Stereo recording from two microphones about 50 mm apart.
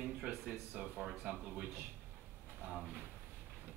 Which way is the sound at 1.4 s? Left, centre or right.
Right.